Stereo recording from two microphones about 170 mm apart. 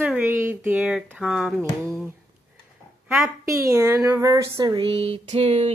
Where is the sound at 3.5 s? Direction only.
20° right (ahead or behind).